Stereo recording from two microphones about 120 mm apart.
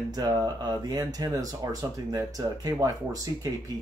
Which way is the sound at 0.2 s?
35° right (ahead or behind).